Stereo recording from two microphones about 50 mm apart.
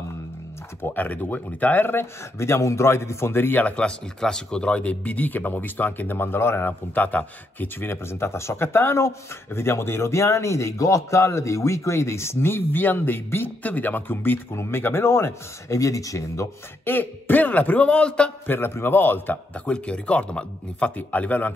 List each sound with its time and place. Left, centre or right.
0.8 s speech: left
2.3 s speech: left
3.4 s speech: left
4.2 s speech: centre; by 7.0 s left
7.0 s speech: left
12.8 s speech: left
14.5 s speech: left
16.8 s speech: left
18.5 s a man's voice: left
19.5 s speech: left